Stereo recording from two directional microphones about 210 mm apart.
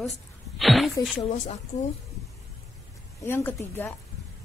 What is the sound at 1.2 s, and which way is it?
Speech, 30° left (ahead or behind).